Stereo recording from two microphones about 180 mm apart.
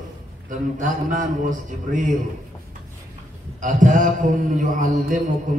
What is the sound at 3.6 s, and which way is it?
A man's voice, 45° right (ahead or behind).